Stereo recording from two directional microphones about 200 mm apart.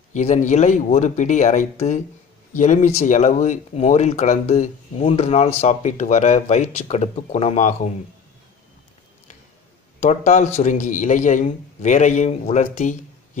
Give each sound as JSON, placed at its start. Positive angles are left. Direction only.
{"t": 0.1, "sound": "speech", "side_deg": 35}
{"t": 9.9, "sound": "speech", "side_deg": 35}